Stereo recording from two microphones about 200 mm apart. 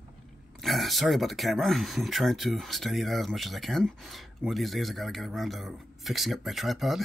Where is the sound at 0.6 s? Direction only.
Centre (ahead or behind).